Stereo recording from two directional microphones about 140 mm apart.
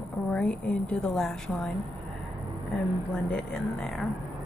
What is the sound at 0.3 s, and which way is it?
Speech, 5° left (ahead or behind).